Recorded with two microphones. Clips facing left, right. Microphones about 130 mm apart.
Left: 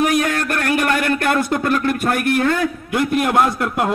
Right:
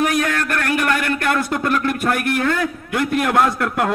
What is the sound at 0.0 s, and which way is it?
A man's voice, 20° left (ahead or behind).